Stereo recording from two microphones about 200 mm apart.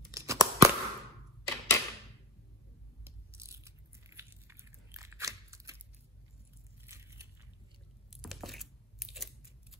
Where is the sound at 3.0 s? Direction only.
15° right (ahead or behind).